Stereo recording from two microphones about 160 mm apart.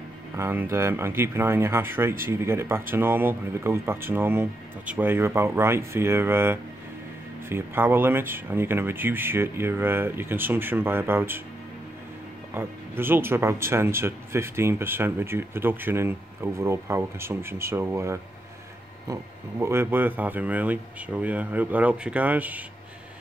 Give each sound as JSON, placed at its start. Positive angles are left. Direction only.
{"t": 0.4, "sound": "speech", "side_deg": -15}
{"t": 12.5, "sound": "speech", "side_deg": -15}
{"t": 19.6, "sound": "speech", "side_deg": -15}